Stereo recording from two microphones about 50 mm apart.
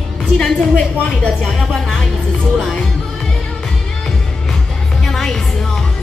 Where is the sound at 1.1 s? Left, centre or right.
Left.